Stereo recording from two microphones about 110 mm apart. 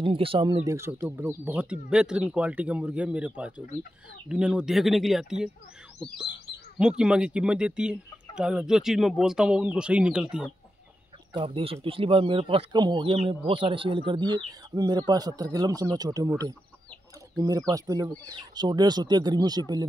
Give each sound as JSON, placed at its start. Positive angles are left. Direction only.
{"t": 0.0, "sound": "speech", "side_deg": -55}
{"t": 0.7, "sound": "speech", "side_deg": -25}
{"t": 6.8, "sound": "speech", "side_deg": -10}
{"t": 11.3, "sound": "speech", "side_deg": -55}
{"t": 12.7, "sound": "speech", "side_deg": -45}
{"t": 17.4, "sound": "speech", "side_deg": -35}